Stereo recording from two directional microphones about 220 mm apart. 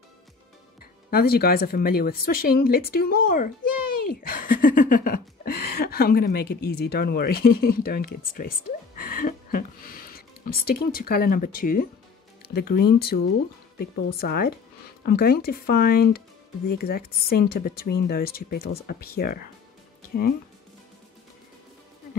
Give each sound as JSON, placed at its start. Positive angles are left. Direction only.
{"t": 1.1, "sound": "speech", "side_deg": 45}